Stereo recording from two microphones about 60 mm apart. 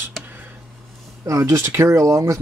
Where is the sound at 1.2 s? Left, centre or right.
Right.